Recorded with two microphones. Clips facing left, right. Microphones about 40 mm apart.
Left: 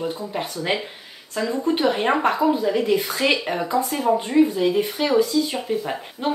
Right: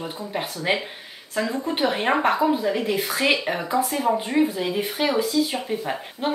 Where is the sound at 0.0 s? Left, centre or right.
Centre.